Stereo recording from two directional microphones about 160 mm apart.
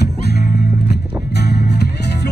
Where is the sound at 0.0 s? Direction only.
90° left.